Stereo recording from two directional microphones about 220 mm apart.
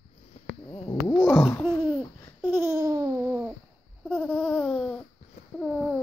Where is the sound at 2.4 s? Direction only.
10° right (ahead or behind).